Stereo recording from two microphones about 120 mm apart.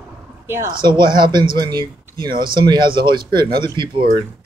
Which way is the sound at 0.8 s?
40° right (ahead or behind).